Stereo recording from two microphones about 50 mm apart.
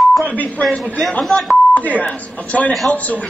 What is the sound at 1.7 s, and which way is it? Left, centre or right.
Speech, left.